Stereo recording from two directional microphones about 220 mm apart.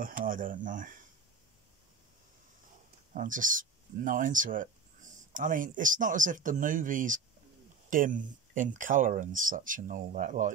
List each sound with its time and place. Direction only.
0.0 s speech: 40° right (ahead or behind)
3.2 s speech: 35° right (ahead or behind)